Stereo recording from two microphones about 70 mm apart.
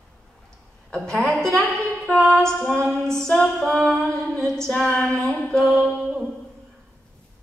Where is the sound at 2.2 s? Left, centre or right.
Centre.